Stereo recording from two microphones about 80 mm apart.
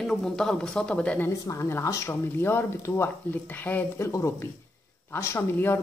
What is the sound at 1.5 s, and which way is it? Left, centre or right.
Speech, left.